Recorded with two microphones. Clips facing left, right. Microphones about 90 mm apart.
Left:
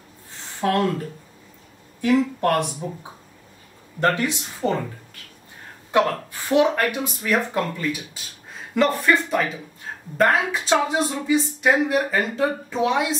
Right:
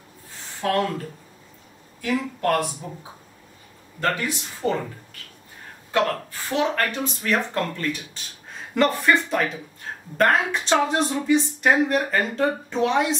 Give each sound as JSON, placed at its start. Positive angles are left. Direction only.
{"t": 0.6, "sound": "speech", "side_deg": 25}
{"t": 2.0, "sound": "speech", "side_deg": 25}
{"t": 4.0, "sound": "speech", "side_deg": 20}
{"t": 6.5, "sound": "a woman's voice", "side_deg": 15}